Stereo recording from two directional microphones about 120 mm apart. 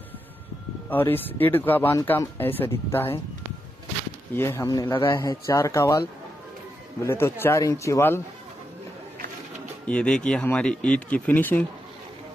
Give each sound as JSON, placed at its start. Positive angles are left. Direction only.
{"t": 0.8, "sound": "speech", "side_deg": 15}
{"t": 4.3, "sound": "a man's voice", "side_deg": 20}
{"t": 7.1, "sound": "a man's voice", "side_deg": 20}
{"t": 9.8, "sound": "speech", "side_deg": 10}